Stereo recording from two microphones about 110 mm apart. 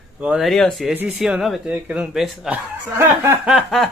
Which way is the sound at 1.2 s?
Centre (ahead or behind).